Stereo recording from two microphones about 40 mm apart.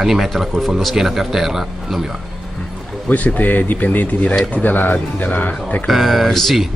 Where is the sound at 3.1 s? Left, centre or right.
Left.